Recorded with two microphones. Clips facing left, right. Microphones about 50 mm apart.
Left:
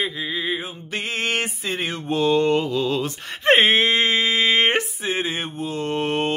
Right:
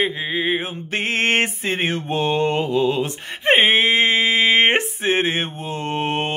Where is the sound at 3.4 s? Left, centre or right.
Centre.